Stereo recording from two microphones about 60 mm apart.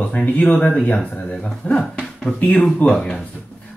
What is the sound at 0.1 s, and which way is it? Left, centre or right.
Speech, left.